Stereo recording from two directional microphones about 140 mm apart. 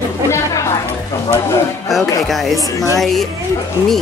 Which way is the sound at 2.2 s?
Centre (ahead or behind).